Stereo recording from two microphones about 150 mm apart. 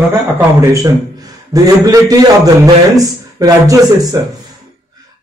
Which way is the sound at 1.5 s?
25° right (ahead or behind).